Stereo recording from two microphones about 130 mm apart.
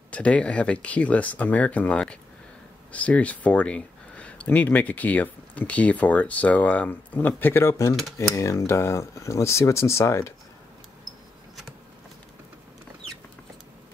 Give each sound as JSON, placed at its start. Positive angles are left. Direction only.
{"t": 0.1, "sound": "speech", "side_deg": 10}